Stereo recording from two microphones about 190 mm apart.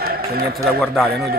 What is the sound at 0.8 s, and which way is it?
Speech, centre (ahead or behind).